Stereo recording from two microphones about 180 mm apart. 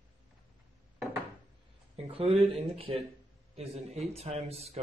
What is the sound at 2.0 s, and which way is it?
A man's voice, 30° right (ahead or behind).